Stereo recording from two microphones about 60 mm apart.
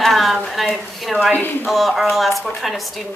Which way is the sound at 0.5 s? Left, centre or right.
Centre.